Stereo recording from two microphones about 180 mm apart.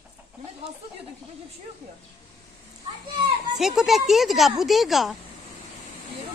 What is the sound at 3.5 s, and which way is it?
Speech, centre (ahead or behind).